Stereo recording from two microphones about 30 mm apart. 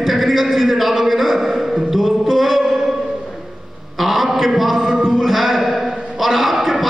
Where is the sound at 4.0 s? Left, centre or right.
Centre.